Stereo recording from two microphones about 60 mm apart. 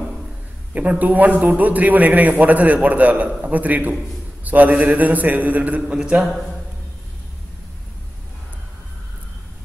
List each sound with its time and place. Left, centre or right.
0.7 s a man's voice: right
5.9 s a man's voice: centre